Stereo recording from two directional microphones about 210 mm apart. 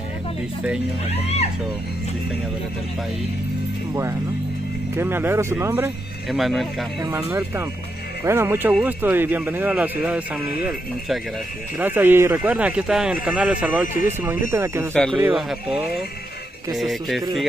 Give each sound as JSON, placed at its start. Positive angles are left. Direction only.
{"t": 1.1, "sound": "speech", "side_deg": 30}
{"t": 4.9, "sound": "speech", "side_deg": -10}
{"t": 6.3, "sound": "speech", "side_deg": 0}
{"t": 7.0, "sound": "speech", "side_deg": -10}
{"t": 11.8, "sound": "speech", "side_deg": -10}